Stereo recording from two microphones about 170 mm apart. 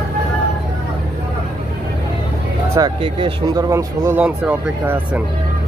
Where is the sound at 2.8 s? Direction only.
30° right (ahead or behind); by 5.2 s 10° right (ahead or behind).